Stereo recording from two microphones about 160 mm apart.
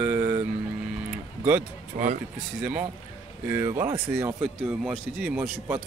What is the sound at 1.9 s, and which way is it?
Speech, 50° right (ahead or behind).